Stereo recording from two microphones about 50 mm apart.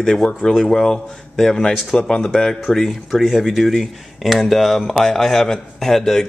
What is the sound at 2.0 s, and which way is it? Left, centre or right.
A man's voice, centre.